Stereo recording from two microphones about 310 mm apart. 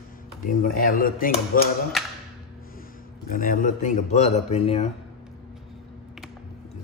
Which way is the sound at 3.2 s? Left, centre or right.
Left.